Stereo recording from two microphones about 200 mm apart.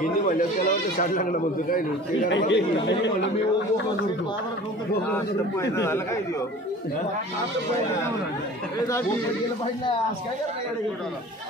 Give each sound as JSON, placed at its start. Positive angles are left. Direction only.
{"t": 0.0, "sound": "speech", "side_deg": 45}
{"t": 2.2, "sound": "speech", "side_deg": 65}